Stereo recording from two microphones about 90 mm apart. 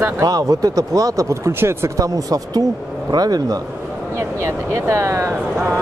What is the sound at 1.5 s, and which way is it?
Speech, 25° right (ahead or behind).